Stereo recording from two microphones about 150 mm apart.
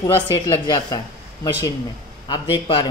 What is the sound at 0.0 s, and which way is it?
A man's voice, 25° left (ahead or behind).